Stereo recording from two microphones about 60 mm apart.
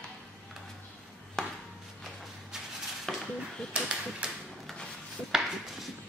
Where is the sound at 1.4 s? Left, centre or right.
Centre.